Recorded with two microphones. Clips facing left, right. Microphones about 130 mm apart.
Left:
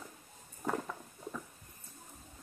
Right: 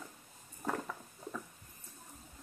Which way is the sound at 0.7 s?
5° left (ahead or behind).